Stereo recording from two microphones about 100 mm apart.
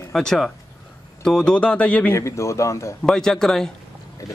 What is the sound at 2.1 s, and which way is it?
Speech, 30° left (ahead or behind).